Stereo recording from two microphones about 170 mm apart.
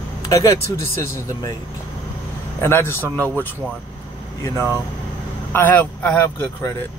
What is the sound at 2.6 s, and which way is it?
Speech, 15° left (ahead or behind).